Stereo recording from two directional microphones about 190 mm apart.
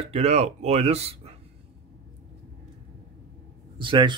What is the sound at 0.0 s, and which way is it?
Rub, 35° right (ahead or behind).